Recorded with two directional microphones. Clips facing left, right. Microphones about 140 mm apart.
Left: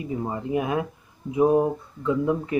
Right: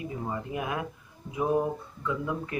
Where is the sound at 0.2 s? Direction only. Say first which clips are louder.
Left 7 dB; 25° left (ahead or behind).